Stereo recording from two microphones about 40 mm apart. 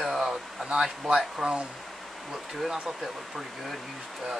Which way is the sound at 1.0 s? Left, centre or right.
Centre.